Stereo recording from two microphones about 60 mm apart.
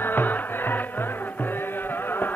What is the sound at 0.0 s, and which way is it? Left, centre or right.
Music, left.